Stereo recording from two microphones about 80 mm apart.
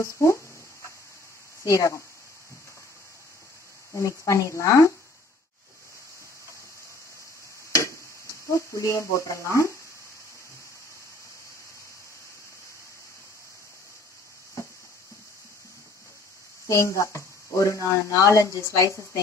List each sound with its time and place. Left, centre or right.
0.0 s speech: left
1.6 s speech: left
3.9 s speech: left
8.5 s speech: left
16.6 s speech: left